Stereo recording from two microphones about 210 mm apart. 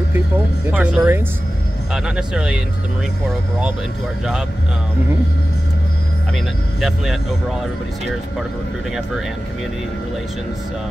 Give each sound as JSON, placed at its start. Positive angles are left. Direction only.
{"t": 0.7, "sound": "speech", "side_deg": -10}
{"t": 6.3, "sound": "speech", "side_deg": 0}